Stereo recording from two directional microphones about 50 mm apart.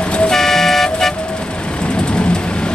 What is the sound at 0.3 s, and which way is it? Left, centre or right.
Vehicle, centre.